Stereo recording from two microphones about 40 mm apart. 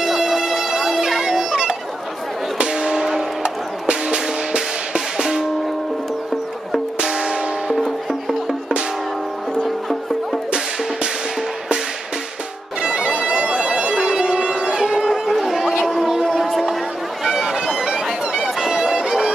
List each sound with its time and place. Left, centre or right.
0.0 s music: centre
0.9 s bagpipes: centre
2.6 s music: centre
3.4 s music: right
7.0 s music: centre
7.7 s music: centre
9.6 s music: centre
12.8 s bagpipes: right
15.0 s a sound: centre
16.1 s music: centre
17.2 s bagpipes: centre
18.3 s music: centre